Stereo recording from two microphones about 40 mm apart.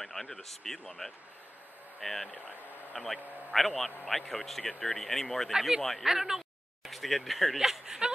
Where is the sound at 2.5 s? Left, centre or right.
Left.